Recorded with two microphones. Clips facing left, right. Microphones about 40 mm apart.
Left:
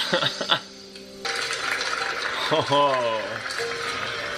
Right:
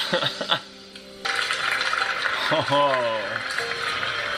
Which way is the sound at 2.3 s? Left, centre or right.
Centre.